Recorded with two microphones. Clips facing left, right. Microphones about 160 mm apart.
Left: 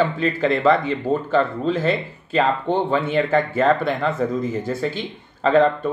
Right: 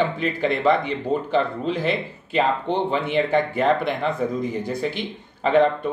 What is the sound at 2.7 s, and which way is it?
Speech, 45° left (ahead or behind).